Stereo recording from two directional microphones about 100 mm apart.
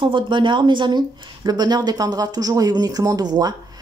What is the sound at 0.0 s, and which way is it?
A woman's voice, 55° right (ahead or behind).